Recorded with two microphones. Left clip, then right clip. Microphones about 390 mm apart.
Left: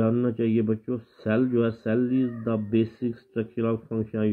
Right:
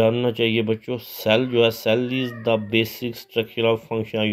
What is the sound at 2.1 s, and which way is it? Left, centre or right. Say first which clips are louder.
Speech: right 5 dB; right.